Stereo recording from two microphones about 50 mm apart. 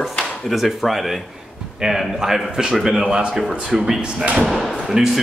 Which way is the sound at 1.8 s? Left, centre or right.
Centre.